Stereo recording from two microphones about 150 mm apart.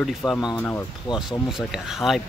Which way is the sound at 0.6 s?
15° left (ahead or behind).